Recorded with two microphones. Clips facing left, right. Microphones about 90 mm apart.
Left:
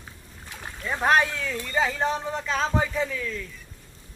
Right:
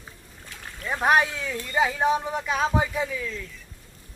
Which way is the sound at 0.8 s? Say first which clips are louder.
Even; 10° right (ahead or behind).